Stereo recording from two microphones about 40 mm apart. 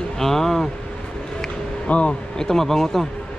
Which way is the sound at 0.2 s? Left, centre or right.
Centre.